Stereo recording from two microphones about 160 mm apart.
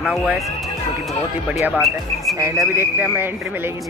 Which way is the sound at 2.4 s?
15° right (ahead or behind).